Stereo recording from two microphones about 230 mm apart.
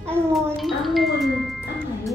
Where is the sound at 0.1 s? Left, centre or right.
Centre.